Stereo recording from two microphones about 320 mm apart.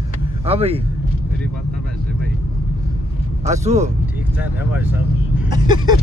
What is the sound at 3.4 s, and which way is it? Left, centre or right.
Speech, right.